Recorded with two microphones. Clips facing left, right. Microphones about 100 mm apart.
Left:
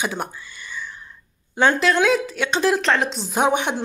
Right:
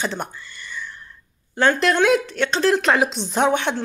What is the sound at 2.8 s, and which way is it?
Speech, 5° right (ahead or behind).